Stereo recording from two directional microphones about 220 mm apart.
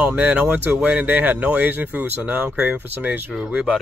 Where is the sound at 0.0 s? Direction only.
5° right (ahead or behind).